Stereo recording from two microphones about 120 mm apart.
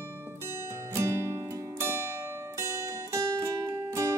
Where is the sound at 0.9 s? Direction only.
20° right (ahead or behind).